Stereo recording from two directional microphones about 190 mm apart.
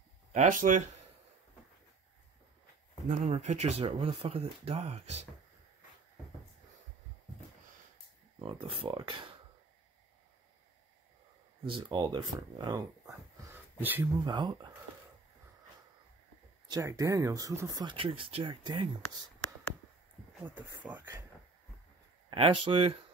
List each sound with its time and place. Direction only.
0.3 s speech: 40° right (ahead or behind)
3.1 s speech: 35° right (ahead or behind)
8.4 s speech: 25° right (ahead or behind)
11.6 s speech: 25° right (ahead or behind); by 14.0 s 10° right (ahead or behind)
14.2 s speech: 25° right (ahead or behind)
16.6 s speech: 20° right (ahead or behind)
20.8 s speech: 10° right (ahead or behind)
22.3 s speech: 25° right (ahead or behind)